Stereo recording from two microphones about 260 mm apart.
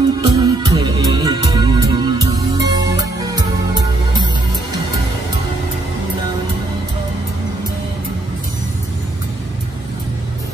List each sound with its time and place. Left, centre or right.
0.2 s music: centre